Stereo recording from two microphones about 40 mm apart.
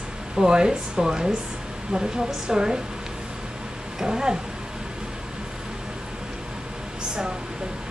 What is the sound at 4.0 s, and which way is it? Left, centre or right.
Speech, centre.